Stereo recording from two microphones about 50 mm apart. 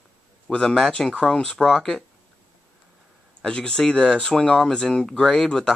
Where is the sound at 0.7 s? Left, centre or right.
Centre.